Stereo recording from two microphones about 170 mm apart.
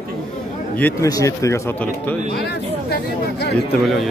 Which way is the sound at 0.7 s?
10° left (ahead or behind).